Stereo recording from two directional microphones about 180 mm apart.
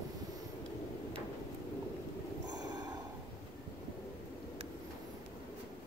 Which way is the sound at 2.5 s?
20° right (ahead or behind).